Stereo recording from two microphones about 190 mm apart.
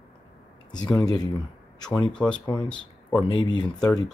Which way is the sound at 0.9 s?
20° left (ahead or behind).